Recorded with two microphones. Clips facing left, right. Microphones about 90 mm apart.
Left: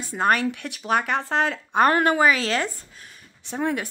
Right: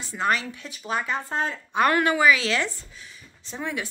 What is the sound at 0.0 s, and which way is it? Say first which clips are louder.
Speech: left 4 dB; 45° left (ahead or behind).